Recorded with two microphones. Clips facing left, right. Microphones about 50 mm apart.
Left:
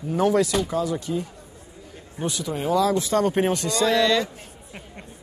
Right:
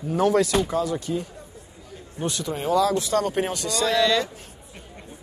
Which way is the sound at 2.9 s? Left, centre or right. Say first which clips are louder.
Left 2 dB; left.